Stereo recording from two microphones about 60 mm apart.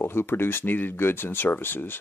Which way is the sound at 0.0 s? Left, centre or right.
Left.